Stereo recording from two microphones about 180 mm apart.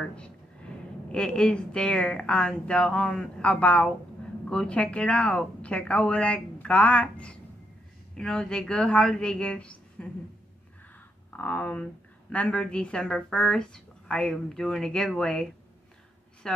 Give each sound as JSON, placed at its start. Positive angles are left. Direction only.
{"t": 0.0, "sound": "a sound", "side_deg": 5}
{"t": 1.1, "sound": "a woman's voice", "side_deg": 5}
{"t": 11.2, "sound": "a woman's voice", "side_deg": 10}
{"t": 16.4, "sound": "a woman's voice", "side_deg": 5}